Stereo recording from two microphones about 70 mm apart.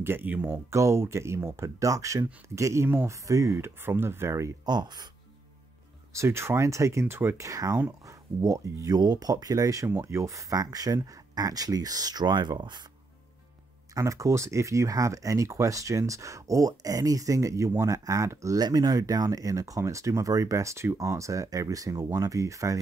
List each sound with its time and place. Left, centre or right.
0.0 s speech: right
0.3 s speech: right
0.7 s speech: right
4.6 s speech: right
6.1 s speech: right
7.3 s speech: right
9.8 s speech: right
13.9 s speech: right
18.6 s speech: right